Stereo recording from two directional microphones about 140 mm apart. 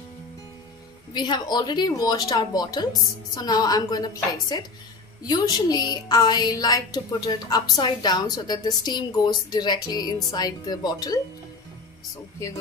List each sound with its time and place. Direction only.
1.1 s a woman's voice: 30° left (ahead or behind)